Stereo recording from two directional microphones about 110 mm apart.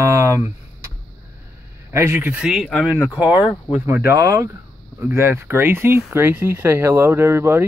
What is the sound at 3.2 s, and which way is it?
Speech, 45° left (ahead or behind).